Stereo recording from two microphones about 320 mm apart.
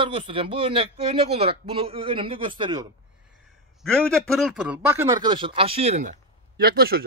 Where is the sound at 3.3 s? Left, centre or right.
Centre.